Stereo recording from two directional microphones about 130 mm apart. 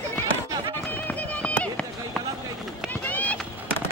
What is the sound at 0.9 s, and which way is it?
Run, 15° left (ahead or behind).